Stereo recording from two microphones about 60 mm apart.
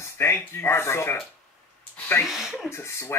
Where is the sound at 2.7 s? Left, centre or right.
Left.